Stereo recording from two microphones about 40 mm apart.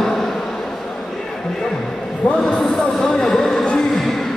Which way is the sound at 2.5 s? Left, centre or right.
Centre.